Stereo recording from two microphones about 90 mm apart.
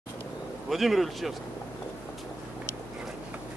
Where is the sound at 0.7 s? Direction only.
Centre (ahead or behind).